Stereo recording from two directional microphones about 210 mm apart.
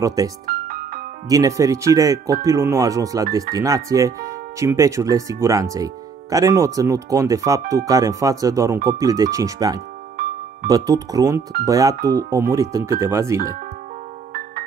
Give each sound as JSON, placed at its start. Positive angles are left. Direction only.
{"t": 0.0, "sound": "speech", "side_deg": -15}
{"t": 0.5, "sound": "music", "side_deg": -40}
{"t": 1.3, "sound": "speech", "side_deg": -15}
{"t": 10.1, "sound": "music", "side_deg": -40}
{"t": 10.7, "sound": "speech", "side_deg": -15}